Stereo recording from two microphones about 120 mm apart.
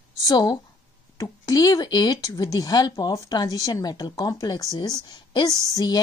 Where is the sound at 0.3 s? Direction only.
30° left (ahead or behind).